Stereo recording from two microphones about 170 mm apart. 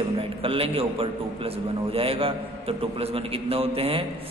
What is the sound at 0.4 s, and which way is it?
A man's voice, 35° right (ahead or behind).